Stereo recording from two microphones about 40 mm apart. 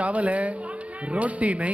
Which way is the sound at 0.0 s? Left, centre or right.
Right.